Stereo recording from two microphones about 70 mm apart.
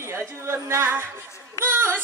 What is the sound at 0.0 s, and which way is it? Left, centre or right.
A woman's voice, right.